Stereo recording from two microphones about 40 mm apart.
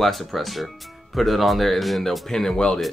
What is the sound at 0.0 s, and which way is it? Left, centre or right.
Speech, centre.